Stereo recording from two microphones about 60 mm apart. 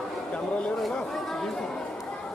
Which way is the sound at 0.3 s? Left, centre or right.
Centre.